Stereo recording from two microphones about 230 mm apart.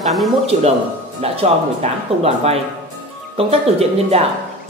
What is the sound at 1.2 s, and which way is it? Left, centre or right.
Speech, right.